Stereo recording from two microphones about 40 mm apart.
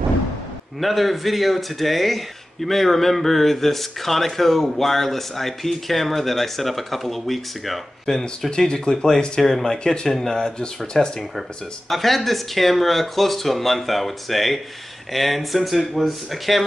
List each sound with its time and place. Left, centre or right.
0.7 s speech: centre
8.5 s speech: centre
11.9 s speech: centre